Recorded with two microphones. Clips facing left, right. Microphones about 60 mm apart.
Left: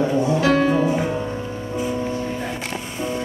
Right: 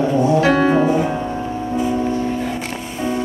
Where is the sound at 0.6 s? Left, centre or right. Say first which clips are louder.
Right 4 dB; right.